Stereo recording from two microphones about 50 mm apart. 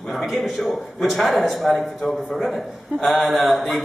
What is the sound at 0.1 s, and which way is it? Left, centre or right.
A man's voice, centre.